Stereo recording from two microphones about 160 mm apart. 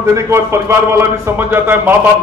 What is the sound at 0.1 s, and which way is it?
A man's voice, 15° right (ahead or behind).